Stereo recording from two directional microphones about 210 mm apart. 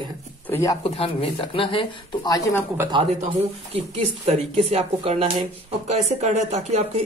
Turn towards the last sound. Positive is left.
turn(degrees=-30)  # may be behind; listen again after turning